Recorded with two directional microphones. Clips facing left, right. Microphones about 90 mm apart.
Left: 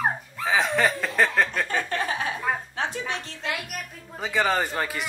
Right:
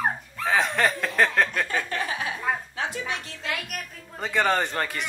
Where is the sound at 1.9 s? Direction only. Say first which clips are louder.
Left 2 dB; 35° left (ahead or behind).